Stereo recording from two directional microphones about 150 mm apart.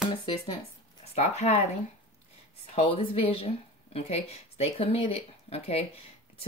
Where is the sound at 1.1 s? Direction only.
45° left (ahead or behind).